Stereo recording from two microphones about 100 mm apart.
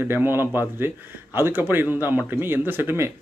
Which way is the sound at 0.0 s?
20° right (ahead or behind).